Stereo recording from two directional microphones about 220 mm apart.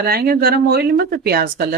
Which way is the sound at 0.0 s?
45° right (ahead or behind).